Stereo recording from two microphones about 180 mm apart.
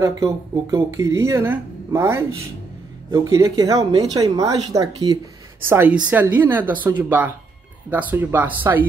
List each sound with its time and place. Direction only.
0.0 s speech: 20° right (ahead or behind)